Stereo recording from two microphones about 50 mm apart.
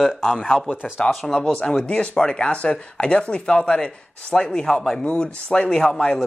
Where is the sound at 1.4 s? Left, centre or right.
Centre.